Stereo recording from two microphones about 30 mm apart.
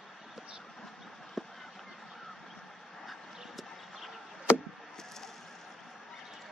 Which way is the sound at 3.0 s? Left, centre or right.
Centre.